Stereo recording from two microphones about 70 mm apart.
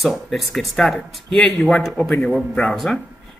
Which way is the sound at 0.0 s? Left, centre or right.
Centre.